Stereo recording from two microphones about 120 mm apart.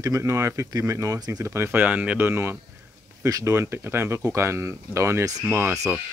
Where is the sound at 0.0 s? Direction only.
25° right (ahead or behind).